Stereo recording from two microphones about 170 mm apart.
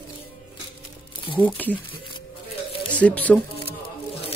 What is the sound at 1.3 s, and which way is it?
Speech, 10° left (ahead or behind).